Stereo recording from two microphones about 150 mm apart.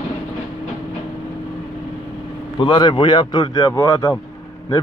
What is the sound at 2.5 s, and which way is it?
A man's voice, 30° left (ahead or behind).